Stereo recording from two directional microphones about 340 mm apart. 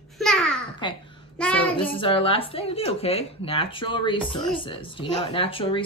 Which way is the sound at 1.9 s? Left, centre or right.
Centre.